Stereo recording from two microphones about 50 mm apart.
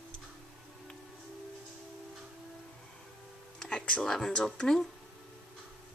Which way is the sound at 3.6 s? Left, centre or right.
Centre.